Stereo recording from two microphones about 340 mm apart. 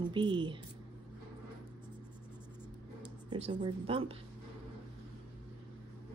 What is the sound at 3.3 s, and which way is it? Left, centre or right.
Speech, centre.